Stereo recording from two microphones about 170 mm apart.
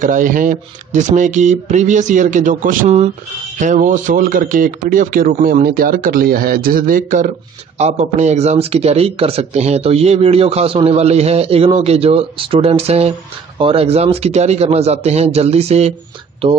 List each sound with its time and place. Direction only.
0.0 s speech: 50° right (ahead or behind)
7.7 s a man's voice: 40° right (ahead or behind)